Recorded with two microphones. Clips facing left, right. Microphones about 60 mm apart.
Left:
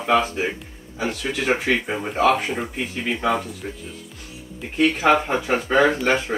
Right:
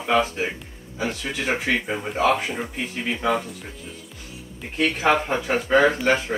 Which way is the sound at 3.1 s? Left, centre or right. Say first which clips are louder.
Left 1 dB; centre.